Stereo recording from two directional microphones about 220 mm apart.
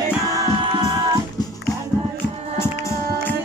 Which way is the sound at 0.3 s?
20° right (ahead or behind).